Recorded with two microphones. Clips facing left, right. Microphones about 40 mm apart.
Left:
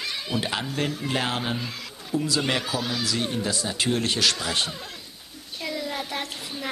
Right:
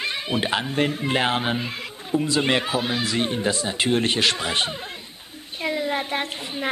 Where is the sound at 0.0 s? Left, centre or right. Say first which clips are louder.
Right 4 dB; right.